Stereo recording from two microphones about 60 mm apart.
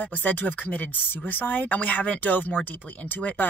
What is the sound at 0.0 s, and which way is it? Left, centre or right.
Speech, left.